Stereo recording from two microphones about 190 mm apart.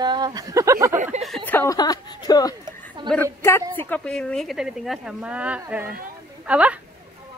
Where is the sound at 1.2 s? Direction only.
5° left (ahead or behind).